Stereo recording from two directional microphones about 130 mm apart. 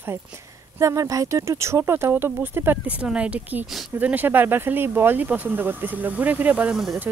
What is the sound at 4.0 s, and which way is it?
Speech, 15° right (ahead or behind).